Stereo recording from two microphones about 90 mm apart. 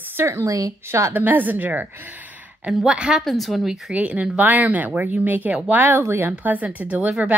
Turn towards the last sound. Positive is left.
turn(degrees=-15)  # may be behind; listen again after turning